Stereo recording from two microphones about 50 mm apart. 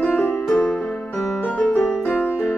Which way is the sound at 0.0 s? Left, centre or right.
Left.